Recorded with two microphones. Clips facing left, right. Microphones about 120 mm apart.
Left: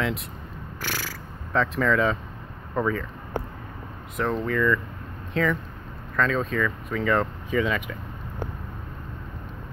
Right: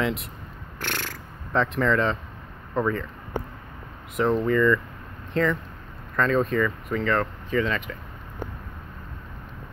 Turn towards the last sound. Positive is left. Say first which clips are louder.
# even
turn(degrees=10)  # may be behind; listen again after turning